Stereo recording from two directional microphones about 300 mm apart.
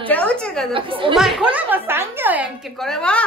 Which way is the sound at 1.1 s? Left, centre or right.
Centre.